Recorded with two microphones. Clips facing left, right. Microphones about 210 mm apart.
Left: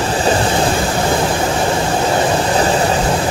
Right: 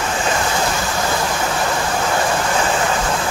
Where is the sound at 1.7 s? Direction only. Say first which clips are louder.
Left 4 dB; 30° left (ahead or behind).